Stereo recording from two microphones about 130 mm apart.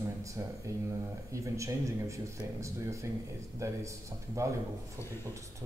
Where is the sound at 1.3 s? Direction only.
25° right (ahead or behind).